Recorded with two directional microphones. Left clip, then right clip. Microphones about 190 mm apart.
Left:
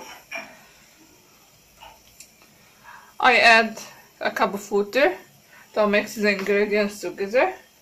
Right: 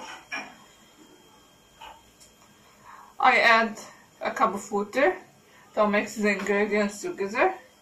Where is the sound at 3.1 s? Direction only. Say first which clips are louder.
Left 4 dB; 45° left (ahead or behind).